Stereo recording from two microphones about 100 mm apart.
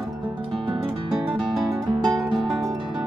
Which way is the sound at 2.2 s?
Centre (ahead or behind).